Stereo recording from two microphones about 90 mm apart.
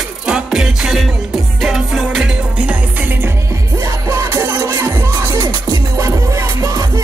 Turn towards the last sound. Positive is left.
turn(degrees=-35)  # may be behind; listen again after turning